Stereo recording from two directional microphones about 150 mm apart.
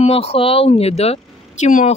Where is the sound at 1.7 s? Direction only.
60° left (ahead or behind).